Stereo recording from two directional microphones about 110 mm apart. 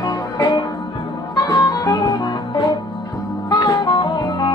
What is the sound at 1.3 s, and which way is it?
Music, 35° left (ahead or behind).